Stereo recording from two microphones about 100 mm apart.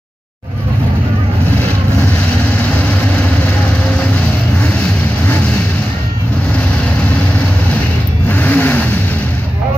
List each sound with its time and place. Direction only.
8.3 s vehicle: 15° left (ahead or behind)